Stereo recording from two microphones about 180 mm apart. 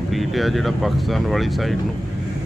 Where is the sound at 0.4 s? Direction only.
Centre (ahead or behind).